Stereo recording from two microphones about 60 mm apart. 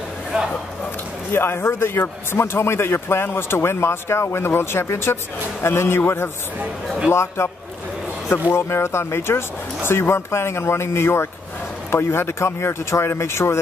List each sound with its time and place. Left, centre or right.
1.3 s a man's voice: left
8.5 s a man's voice: left